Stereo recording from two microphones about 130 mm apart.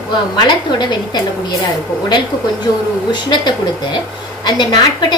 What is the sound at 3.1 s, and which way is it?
A woman's voice, 35° left (ahead or behind).